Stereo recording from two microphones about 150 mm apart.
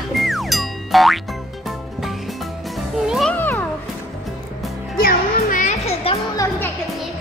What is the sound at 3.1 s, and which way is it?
Music, centre (ahead or behind).